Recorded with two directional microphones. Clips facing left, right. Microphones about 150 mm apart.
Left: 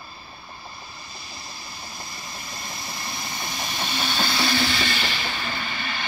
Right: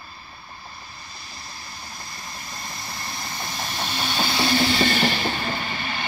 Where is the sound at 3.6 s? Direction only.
Centre (ahead or behind).